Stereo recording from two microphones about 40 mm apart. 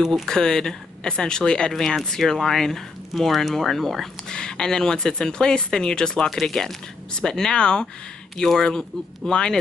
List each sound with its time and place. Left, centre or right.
0.0 s speech: centre
0.3 s speech: centre
1.7 s speech: centre
4.3 s speech: centre
8.4 s speech: centre
9.3 s speech: centre